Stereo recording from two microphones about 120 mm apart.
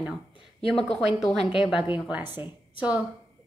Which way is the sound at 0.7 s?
5° left (ahead or behind).